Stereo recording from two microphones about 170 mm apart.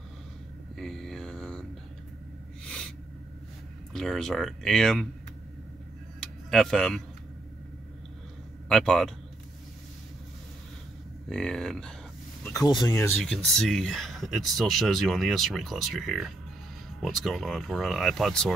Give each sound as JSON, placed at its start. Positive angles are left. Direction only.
{"t": 0.7, "sound": "mantra", "side_deg": 0}
{"t": 2.6, "sound": "a sound", "side_deg": 5}
{"t": 3.9, "sound": "speech", "side_deg": 5}
{"t": 6.2, "sound": "a sound", "side_deg": 0}
{"t": 8.6, "sound": "speech", "side_deg": 5}
{"t": 11.2, "sound": "speech", "side_deg": 5}
{"t": 12.4, "sound": "speech", "side_deg": 20}
{"t": 13.1, "sound": "speech", "side_deg": 0}